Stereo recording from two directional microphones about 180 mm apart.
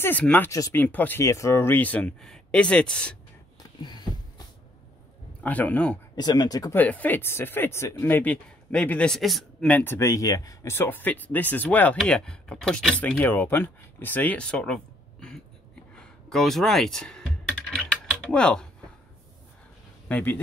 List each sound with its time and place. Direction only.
0.0 s speech: 10° left (ahead or behind)
3.8 s a sound: 25° left (ahead or behind)
5.4 s speech: 10° left (ahead or behind)
6.1 s speech: 20° left (ahead or behind)
6.8 s speech: 10° left (ahead or behind)
15.9 s typing: 5° left (ahead or behind)
20.1 s speech: 10° left (ahead or behind)